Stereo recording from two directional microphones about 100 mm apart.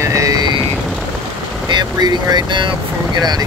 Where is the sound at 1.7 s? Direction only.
45° right (ahead or behind).